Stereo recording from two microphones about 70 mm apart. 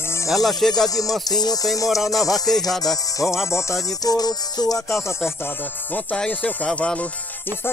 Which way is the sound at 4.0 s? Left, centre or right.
Left.